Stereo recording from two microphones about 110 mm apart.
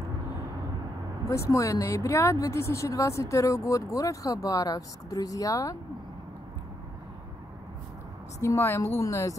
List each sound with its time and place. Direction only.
1.3 s speech: 30° left (ahead or behind)
8.4 s speech: 25° left (ahead or behind)